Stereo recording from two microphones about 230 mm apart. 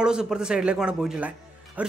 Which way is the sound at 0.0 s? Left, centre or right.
Centre.